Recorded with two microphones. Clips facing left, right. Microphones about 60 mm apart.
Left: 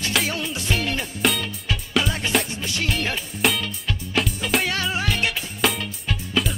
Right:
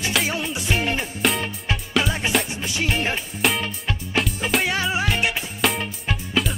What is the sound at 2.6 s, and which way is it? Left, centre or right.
Music, centre.